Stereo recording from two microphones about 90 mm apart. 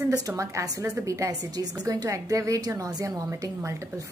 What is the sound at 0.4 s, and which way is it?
A woman's voice, 35° right (ahead or behind).